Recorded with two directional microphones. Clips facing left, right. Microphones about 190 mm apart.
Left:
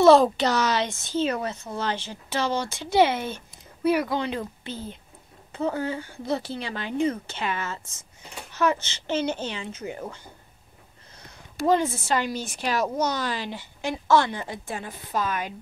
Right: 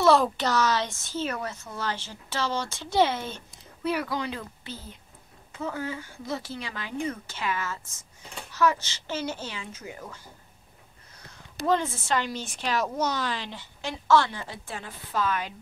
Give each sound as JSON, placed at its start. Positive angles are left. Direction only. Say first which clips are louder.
{"t": 0.0, "sound": "speech", "louder": "left 5 dB", "side_deg": 25}
{"t": 11.6, "sound": "speech", "louder": "left 4 dB", "side_deg": 10}